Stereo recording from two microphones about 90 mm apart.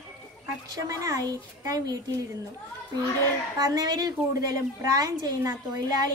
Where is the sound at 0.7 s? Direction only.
35° right (ahead or behind).